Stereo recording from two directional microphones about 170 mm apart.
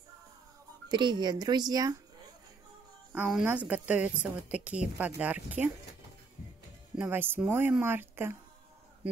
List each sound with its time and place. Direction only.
0.8 s a child's voice: 25° right (ahead or behind)
3.1 s a woman's voice: 5° right (ahead or behind)
7.0 s a woman's voice: 10° right (ahead or behind)